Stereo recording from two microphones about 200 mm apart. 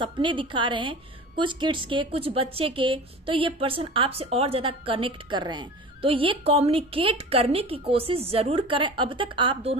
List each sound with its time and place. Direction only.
0.0 s a woman's voice: 25° right (ahead or behind)